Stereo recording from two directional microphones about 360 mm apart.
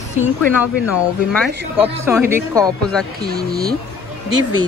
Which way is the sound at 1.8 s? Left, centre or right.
Centre.